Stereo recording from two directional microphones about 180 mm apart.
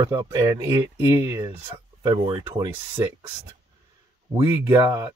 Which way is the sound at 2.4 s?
10° right (ahead or behind).